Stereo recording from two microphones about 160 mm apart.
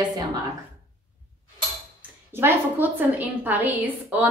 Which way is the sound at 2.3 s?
15° right (ahead or behind).